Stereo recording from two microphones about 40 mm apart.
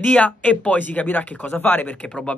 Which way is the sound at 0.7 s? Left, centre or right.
Left.